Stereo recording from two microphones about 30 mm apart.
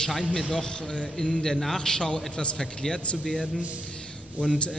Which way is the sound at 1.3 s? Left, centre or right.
Centre.